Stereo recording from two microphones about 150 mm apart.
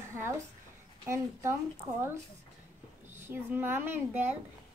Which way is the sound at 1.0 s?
20° right (ahead or behind).